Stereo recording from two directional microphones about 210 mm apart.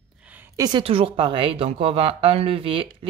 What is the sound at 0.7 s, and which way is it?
A woman's voice, 25° right (ahead or behind).